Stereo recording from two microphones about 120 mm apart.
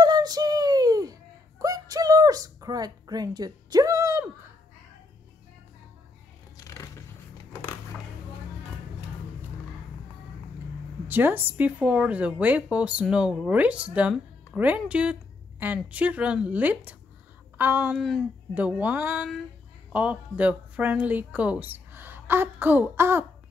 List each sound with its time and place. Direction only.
0.0 s a sound: 35° right (ahead or behind)
6.5 s music: 25° left (ahead or behind)
11.1 s a woman's voice: 15° right (ahead or behind)
17.9 s speech: centre (ahead or behind)
18.5 s a woman's voice: 15° right (ahead or behind)